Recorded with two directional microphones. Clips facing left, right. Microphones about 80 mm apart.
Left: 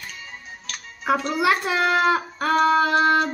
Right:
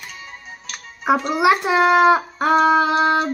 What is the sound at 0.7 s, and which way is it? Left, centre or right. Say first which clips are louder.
Speech: right 4 dB; centre.